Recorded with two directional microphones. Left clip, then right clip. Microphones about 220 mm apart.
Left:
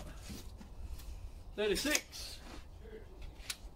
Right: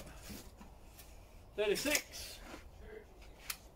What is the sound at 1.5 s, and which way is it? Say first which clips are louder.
Speech: even; 20° left (ahead or behind).